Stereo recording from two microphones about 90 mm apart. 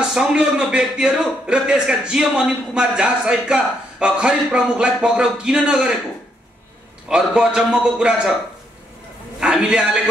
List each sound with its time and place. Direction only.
0.0 s a man's voice: 10° right (ahead or behind)
7.1 s a man's voice: 10° right (ahead or behind)
9.4 s a man's voice: 10° right (ahead or behind)